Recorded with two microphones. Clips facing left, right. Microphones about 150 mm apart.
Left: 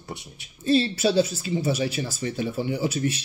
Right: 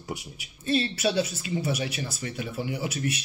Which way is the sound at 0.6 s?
30° left (ahead or behind).